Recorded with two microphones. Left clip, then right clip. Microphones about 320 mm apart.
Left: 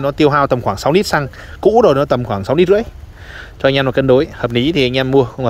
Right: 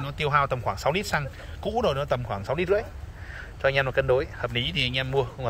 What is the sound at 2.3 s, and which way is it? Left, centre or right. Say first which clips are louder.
Speech: left 13 dB; left.